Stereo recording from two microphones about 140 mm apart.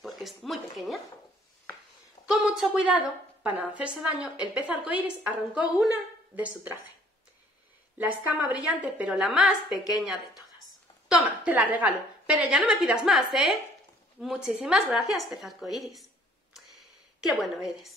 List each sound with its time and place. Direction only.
0.0 s a sound: centre (ahead or behind)
2.2 s a woman's voice: 5° right (ahead or behind)
8.3 s a woman's voice: 10° right (ahead or behind)
9.7 s a woman's voice: 25° left (ahead or behind)
11.1 s a woman's voice: 10° right (ahead or behind)
17.3 s a woman's voice: centre (ahead or behind)